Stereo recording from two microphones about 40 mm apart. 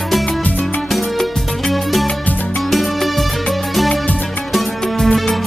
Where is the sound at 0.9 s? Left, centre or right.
Centre.